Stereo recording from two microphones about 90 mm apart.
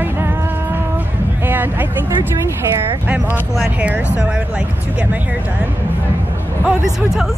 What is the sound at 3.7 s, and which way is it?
Speech, 15° right (ahead or behind).